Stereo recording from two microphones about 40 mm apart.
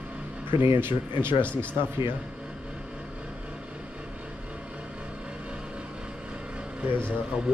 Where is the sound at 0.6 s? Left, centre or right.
Right.